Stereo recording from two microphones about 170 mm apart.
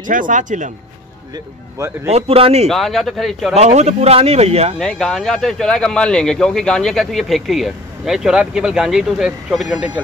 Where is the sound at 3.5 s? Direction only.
40° right (ahead or behind).